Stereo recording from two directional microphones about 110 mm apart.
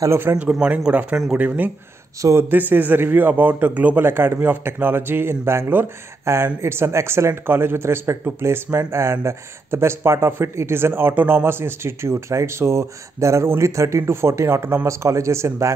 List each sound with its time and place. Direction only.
0.0 s a man's voice: 20° right (ahead or behind)
0.5 s a man's voice: 10° right (ahead or behind); by 15.7 s 25° right (ahead or behind)